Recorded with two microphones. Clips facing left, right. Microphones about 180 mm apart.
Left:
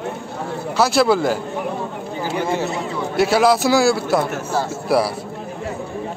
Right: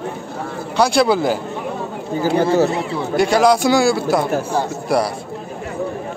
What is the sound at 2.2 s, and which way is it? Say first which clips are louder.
Speech: right 7 dB; 40° right (ahead or behind).